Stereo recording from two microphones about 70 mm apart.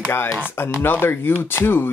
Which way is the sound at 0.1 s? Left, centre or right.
Left.